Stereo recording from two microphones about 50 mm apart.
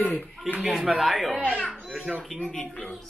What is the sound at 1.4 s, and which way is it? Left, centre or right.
Speech, left.